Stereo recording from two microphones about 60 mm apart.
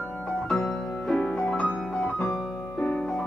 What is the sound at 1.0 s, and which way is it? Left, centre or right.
Music, centre.